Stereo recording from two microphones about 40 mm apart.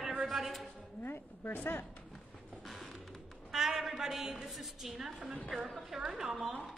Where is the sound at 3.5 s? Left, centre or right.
Centre.